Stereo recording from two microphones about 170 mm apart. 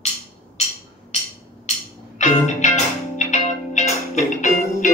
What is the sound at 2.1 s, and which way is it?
Music, 45° left (ahead or behind).